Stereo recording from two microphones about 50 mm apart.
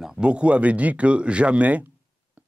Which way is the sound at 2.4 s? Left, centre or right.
Right.